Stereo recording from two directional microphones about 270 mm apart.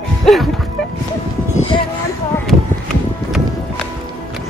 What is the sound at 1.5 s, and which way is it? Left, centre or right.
Music, left.